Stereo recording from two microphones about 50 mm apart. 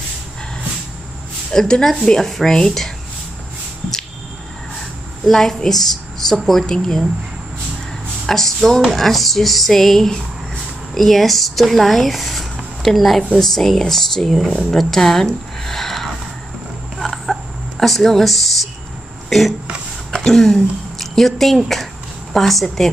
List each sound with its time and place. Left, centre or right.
1.5 s a woman's voice: centre
5.2 s speech: centre
8.3 s speech: centre
17.0 s a sound: centre
19.2 s throat clearing: centre
20.2 s speech: centre